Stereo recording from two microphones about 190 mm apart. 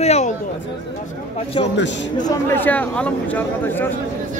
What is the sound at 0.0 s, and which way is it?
Speech, 35° left (ahead or behind).